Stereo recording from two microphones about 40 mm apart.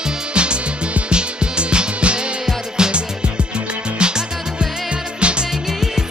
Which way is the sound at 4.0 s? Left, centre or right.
Right.